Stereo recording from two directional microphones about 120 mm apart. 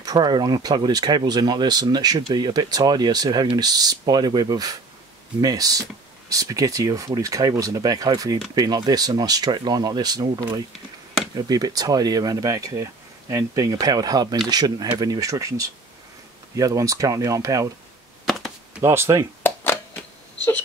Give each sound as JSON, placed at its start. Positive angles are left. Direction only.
{"t": 0.0, "sound": "speech", "side_deg": -35}
{"t": 11.3, "sound": "speech", "side_deg": -35}
{"t": 18.8, "sound": "speech", "side_deg": -20}
{"t": 19.4, "sound": "a sound", "side_deg": 15}